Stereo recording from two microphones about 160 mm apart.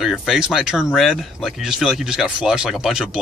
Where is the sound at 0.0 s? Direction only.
Centre (ahead or behind).